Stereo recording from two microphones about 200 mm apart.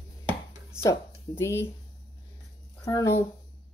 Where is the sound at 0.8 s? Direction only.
15° left (ahead or behind).